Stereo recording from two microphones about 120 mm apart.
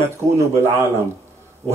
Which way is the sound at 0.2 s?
25° right (ahead or behind).